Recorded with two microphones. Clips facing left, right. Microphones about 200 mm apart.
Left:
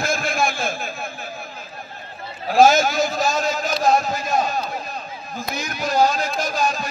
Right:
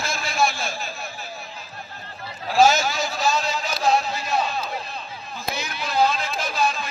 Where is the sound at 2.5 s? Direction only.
50° left (ahead or behind).